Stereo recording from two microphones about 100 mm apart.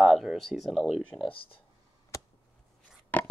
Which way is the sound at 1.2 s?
60° left (ahead or behind).